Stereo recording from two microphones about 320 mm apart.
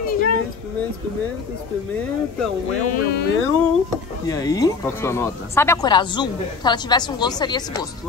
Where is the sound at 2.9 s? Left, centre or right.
Left.